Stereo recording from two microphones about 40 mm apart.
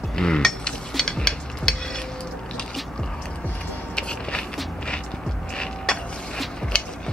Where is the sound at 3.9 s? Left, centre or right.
Left.